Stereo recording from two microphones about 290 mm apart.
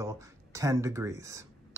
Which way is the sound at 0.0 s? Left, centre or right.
Centre.